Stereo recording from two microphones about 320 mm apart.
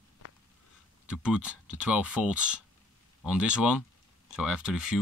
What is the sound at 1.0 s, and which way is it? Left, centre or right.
Speech, centre.